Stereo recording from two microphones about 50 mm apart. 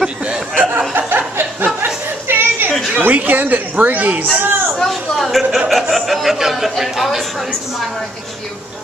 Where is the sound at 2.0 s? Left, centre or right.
Right.